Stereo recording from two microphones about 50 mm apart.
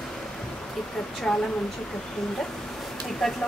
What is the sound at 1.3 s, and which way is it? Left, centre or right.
Speech, centre.